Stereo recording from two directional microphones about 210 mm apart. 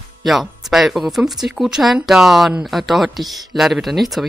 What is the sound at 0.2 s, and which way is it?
Speech, centre (ahead or behind).